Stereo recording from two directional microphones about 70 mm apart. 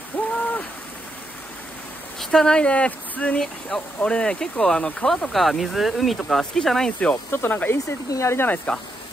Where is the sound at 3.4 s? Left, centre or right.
Centre.